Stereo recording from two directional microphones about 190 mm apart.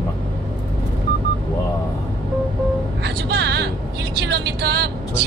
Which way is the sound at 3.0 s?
60° right (ahead or behind).